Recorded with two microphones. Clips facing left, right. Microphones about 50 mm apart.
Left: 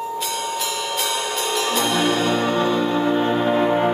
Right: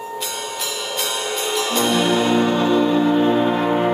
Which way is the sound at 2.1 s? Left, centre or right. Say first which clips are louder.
Right 2 dB; centre.